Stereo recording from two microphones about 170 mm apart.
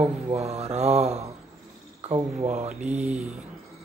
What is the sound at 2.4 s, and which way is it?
Speech, 40° right (ahead or behind).